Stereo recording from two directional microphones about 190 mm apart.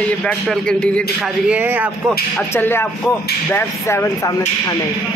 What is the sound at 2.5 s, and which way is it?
Speech, 10° left (ahead or behind).